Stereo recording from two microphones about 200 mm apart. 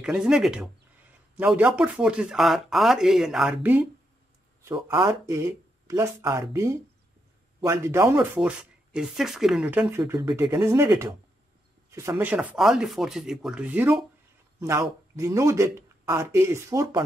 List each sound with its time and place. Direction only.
0.0 s speech: 5° right (ahead or behind)
4.8 s speech: 20° right (ahead or behind)